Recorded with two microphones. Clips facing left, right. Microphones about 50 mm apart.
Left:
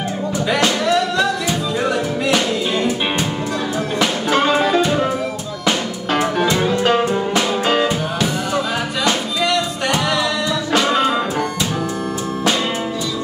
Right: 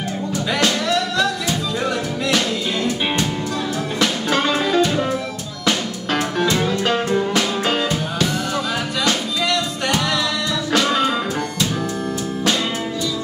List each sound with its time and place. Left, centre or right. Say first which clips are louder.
0.5 s music: left 3 dB; centre
10.7 s music: left 2 dB; centre